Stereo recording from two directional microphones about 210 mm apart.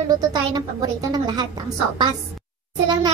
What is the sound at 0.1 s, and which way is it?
Speech, 20° right (ahead or behind).